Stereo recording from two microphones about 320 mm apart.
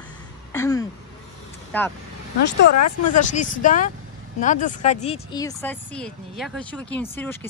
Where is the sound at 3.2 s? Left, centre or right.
Left.